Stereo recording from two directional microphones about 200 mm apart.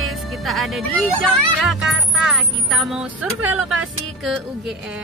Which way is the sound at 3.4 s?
90° right.